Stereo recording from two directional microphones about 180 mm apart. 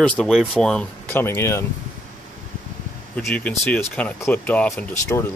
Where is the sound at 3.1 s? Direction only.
5° left (ahead or behind).